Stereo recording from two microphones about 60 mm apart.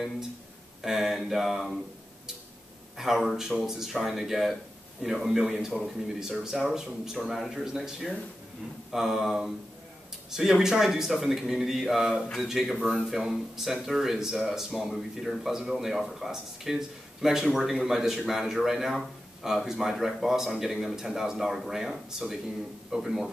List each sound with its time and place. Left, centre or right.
0.8 s speech: centre
3.0 s speech: centre